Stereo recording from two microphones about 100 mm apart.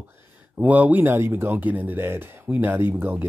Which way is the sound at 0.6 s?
15° right (ahead or behind).